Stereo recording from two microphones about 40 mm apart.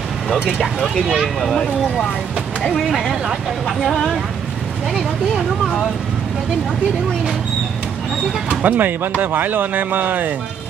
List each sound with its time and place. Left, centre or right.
0.6 s speech: centre
1.2 s speech: centre
2.6 s speech: centre
8.6 s speech: right